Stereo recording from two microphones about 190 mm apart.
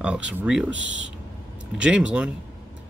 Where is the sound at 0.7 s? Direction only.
80° right.